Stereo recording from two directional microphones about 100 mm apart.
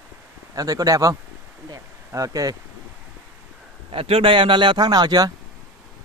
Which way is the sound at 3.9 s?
70° right (ahead or behind).